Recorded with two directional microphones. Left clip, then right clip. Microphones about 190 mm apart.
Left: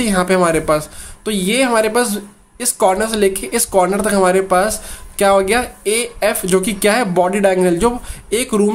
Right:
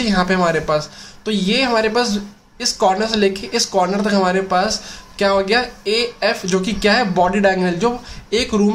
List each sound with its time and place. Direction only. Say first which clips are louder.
0.0 s speech: left 2 dB; 30° left (ahead or behind)